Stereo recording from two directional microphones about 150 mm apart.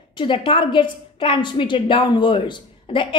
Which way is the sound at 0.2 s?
35° left (ahead or behind).